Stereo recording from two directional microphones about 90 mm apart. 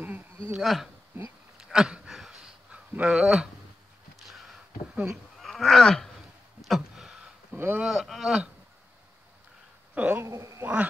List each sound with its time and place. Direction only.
0.5 s speech: centre (ahead or behind)
1.6 s a sound: 10° right (ahead or behind)
2.7 s speech: 10° right (ahead or behind)
4.3 s a sound: centre (ahead or behind)
4.9 s speech: 10° right (ahead or behind)
5.4 s a sound: 5° left (ahead or behind)
7.5 s speech: 20° right (ahead or behind)
7.8 s speech: 5° right (ahead or behind)
9.9 s speech: 15° right (ahead or behind)
10.2 s a man's voice: 35° right (ahead or behind)
10.6 s speech: 15° right (ahead or behind)